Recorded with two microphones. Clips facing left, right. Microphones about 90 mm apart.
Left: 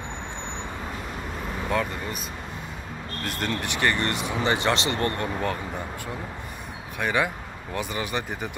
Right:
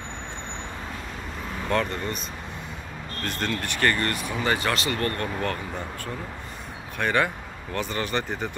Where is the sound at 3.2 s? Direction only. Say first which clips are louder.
Even; 15° left (ahead or behind).